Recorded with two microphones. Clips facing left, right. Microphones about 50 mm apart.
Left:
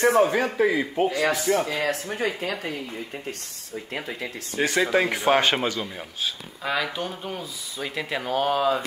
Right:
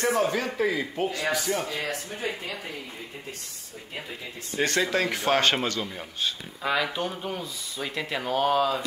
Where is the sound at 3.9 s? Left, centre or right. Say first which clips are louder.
Left 4 dB; left.